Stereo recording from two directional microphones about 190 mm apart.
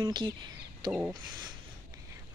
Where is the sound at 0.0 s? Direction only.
25° right (ahead or behind).